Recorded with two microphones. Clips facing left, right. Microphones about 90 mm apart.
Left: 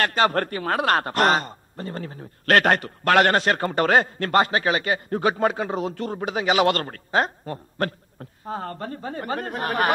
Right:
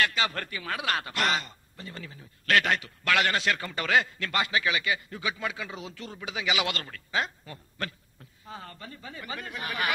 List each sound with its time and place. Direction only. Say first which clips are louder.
0.0 s a man's voice: left 8 dB; 45° left (ahead or behind)